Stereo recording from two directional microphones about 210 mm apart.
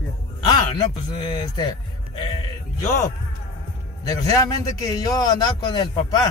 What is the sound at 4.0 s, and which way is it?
Speech, 15° left (ahead or behind).